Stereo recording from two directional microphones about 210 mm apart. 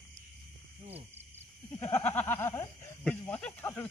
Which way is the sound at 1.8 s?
10° left (ahead or behind).